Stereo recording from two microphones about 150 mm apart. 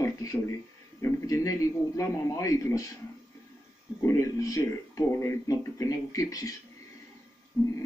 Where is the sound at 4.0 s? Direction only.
20° left (ahead or behind).